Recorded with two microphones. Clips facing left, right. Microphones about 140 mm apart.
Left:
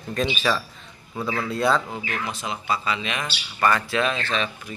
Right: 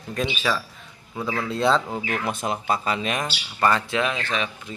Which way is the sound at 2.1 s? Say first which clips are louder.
Right 4 dB; 50° right (ahead or behind).